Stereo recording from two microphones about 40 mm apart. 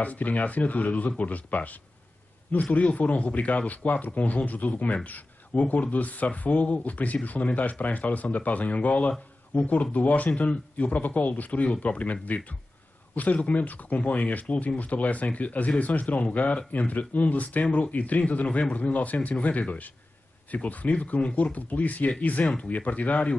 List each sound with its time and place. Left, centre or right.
0.0 s speech: left